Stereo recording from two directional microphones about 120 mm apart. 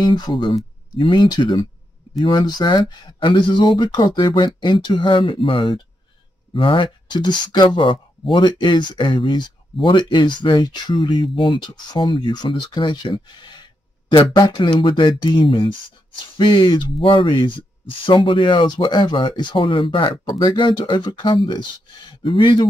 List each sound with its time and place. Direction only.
0.0 s speech: 40° left (ahead or behind)